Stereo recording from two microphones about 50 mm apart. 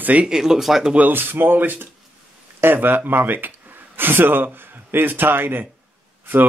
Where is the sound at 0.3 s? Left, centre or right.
Centre.